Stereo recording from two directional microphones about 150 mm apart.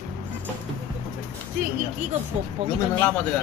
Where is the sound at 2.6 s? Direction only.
40° right (ahead or behind).